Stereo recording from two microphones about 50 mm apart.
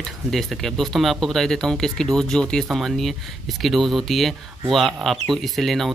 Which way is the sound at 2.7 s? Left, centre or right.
Centre.